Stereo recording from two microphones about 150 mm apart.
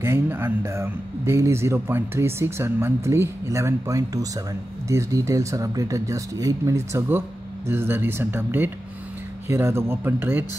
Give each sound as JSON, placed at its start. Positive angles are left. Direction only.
{"t": 0.0, "sound": "speech", "side_deg": -15}